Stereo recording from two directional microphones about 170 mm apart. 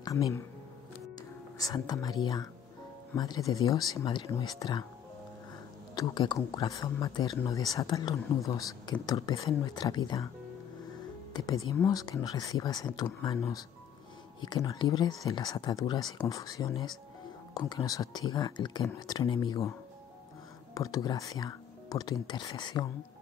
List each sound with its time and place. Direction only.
0.0 s speech: 20° left (ahead or behind)
1.6 s speech: 20° left (ahead or behind)
5.9 s speech: 25° left (ahead or behind)
11.3 s speech: 25° left (ahead or behind)
20.7 s speech: 20° left (ahead or behind)